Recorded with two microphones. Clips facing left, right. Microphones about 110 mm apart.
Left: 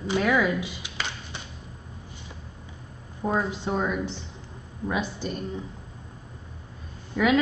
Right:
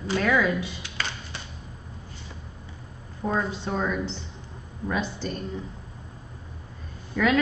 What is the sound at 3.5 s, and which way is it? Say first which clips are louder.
Speech: left 1 dB; 15° left (ahead or behind).